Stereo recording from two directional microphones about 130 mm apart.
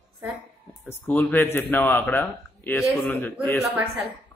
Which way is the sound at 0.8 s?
15° left (ahead or behind).